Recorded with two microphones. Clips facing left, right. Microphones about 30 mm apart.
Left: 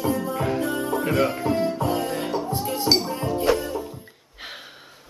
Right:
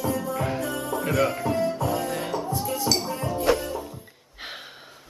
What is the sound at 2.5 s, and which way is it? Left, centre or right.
Music, left.